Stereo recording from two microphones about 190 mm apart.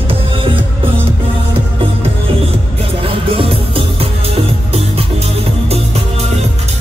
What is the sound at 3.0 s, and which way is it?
Music, 30° right (ahead or behind).